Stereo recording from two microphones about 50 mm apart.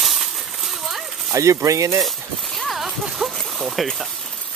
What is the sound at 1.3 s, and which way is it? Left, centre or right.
Speech, right.